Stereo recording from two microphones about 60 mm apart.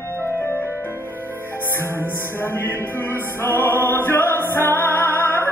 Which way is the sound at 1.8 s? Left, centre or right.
Left.